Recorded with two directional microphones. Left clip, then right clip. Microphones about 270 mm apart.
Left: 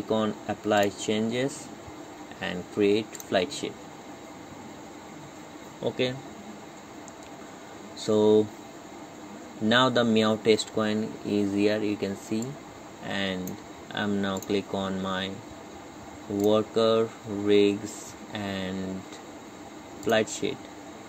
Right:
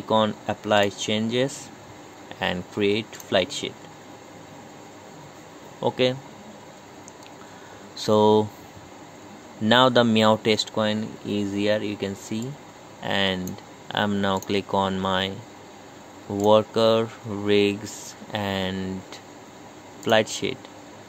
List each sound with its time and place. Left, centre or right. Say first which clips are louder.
0.1 s speech: right 6 dB; right
8.0 s speech: right 3 dB; right
9.7 s speech: right 5 dB; right
16.4 s speech: right 5 dB; right
20.1 s speech: right 4 dB; right